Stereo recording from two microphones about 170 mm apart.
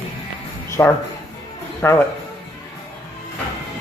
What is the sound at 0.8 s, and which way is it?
Speech, 15° left (ahead or behind).